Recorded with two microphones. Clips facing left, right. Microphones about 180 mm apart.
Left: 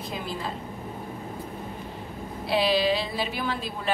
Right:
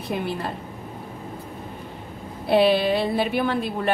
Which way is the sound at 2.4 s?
55° right (ahead or behind).